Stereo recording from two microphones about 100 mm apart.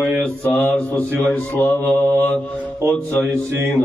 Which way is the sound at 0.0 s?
15° right (ahead or behind).